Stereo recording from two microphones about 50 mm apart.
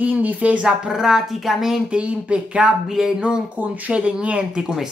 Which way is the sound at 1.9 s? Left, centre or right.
Right.